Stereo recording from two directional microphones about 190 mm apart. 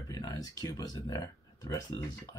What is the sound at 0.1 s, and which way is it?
Speech, 20° left (ahead or behind).